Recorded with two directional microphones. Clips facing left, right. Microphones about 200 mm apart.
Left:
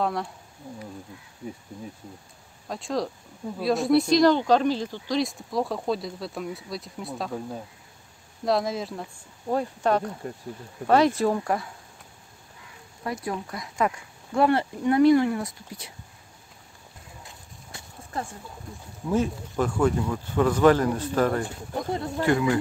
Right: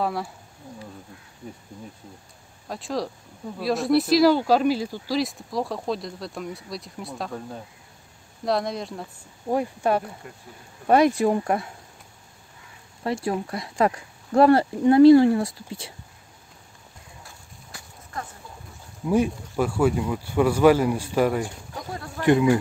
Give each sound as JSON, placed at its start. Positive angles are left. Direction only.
{"t": 0.0, "sound": "speech", "side_deg": -5}
{"t": 2.7, "sound": "speech", "side_deg": 0}
{"t": 9.5, "sound": "speech", "side_deg": -10}
{"t": 13.0, "sound": "speech", "side_deg": -30}
{"t": 17.2, "sound": "horse", "side_deg": 20}
{"t": 19.0, "sound": "speech", "side_deg": -10}
{"t": 21.9, "sound": "speech", "side_deg": 25}
{"t": 22.2, "sound": "speech", "side_deg": -20}